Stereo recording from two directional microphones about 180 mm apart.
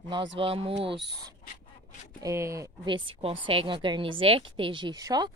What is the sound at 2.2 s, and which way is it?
A woman's voice, 15° right (ahead or behind).